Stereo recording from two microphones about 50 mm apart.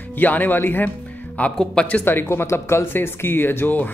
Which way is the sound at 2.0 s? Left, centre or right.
Left.